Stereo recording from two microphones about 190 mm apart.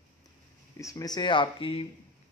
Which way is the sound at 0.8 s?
15° left (ahead or behind).